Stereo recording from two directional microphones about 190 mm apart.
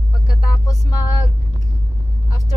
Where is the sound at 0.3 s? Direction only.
20° left (ahead or behind).